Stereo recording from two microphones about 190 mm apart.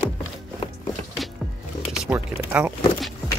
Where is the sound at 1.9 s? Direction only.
5° right (ahead or behind).